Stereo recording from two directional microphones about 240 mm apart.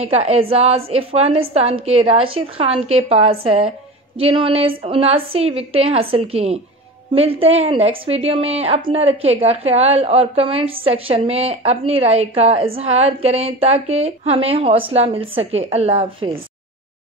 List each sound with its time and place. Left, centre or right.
0.0 s a woman's voice: right